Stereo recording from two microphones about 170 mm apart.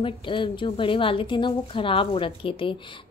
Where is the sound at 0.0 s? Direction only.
30° left (ahead or behind).